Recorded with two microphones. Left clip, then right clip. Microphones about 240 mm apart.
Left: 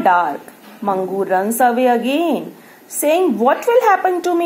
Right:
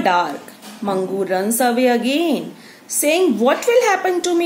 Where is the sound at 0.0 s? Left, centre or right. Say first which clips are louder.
Left 3 dB; centre.